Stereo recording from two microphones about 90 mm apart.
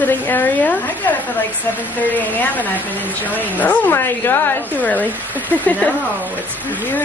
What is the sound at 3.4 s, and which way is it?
A woman's voice, 20° left (ahead or behind).